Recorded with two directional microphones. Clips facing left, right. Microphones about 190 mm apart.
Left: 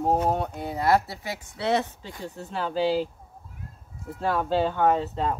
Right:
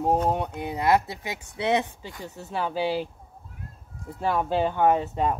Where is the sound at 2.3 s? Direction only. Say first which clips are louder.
Right 1 dB; 5° right (ahead or behind).